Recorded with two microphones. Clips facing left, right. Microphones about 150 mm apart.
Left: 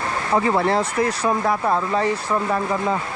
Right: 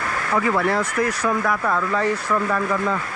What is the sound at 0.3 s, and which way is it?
Speech, 30° left (ahead or behind).